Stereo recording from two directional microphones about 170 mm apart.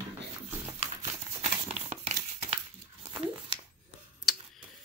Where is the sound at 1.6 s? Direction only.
35° right (ahead or behind).